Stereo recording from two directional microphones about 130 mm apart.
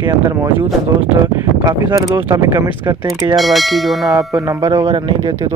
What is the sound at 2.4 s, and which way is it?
Speech, 25° right (ahead or behind).